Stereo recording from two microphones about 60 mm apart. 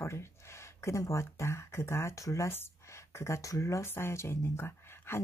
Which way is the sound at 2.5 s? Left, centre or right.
Left.